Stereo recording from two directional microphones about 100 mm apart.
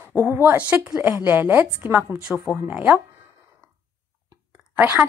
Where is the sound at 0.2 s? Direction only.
20° right (ahead or behind).